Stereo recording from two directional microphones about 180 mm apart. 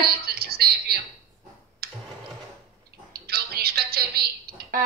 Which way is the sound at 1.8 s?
60° right (ahead or behind).